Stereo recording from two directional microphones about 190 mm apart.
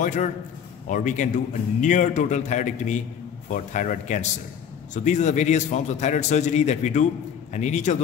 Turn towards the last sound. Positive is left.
turn(degrees=40)  # may be behind; listen again after turning